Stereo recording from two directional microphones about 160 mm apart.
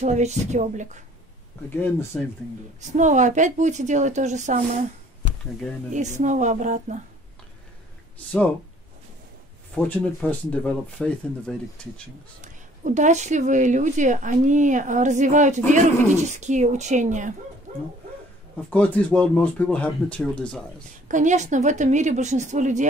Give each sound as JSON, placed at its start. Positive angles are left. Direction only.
{"t": 0.0, "sound": "speech", "side_deg": -45}
{"t": 2.1, "sound": "speech", "side_deg": 5}
{"t": 2.8, "sound": "speech", "side_deg": -50}
{"t": 5.9, "sound": "speech", "side_deg": -50}
{"t": 10.0, "sound": "speech", "side_deg": 10}
{"t": 12.8, "sound": "speech", "side_deg": -50}
{"t": 18.7, "sound": "speech", "side_deg": 5}
{"t": 21.1, "sound": "speech", "side_deg": -50}